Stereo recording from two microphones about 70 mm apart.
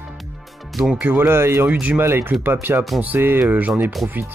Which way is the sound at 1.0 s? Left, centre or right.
Right.